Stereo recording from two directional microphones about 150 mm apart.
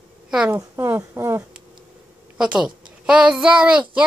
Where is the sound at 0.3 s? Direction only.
5° right (ahead or behind).